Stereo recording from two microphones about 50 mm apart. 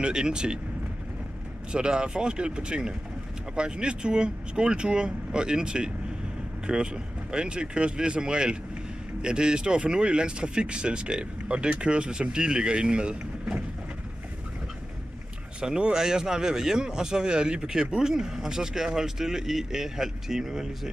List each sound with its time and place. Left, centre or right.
0.0 s speech: centre
1.7 s speech: centre
15.6 s speech: centre